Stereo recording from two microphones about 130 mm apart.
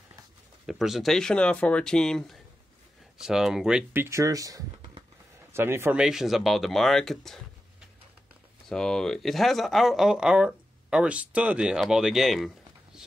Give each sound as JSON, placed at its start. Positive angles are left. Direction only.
{"t": 0.7, "sound": "speech", "side_deg": 0}
{"t": 3.9, "sound": "speech", "side_deg": -20}
{"t": 5.9, "sound": "speech", "side_deg": -5}
{"t": 8.6, "sound": "speech", "side_deg": 5}